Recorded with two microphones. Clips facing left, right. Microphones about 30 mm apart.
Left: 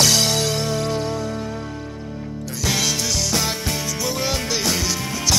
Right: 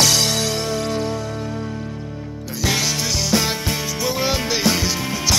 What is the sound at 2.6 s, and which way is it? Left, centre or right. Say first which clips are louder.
Music: right 1 dB; centre.